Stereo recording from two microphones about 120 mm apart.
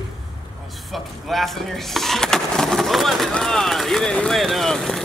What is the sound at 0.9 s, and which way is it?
Speech, centre (ahead or behind).